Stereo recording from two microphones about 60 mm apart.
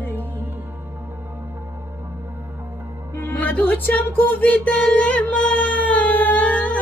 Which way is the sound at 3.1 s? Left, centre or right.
Left.